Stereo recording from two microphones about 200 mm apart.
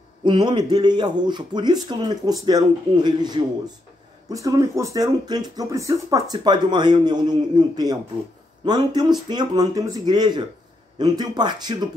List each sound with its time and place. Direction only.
0.2 s speech: 25° right (ahead or behind)